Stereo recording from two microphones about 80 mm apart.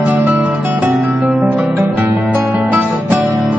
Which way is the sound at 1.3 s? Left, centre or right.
Centre.